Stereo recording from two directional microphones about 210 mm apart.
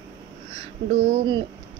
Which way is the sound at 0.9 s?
55° right (ahead or behind).